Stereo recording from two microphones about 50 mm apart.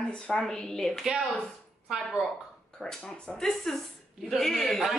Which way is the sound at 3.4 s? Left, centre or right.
Centre.